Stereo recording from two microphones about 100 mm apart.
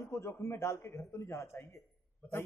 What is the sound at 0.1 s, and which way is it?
A man's voice, 30° left (ahead or behind).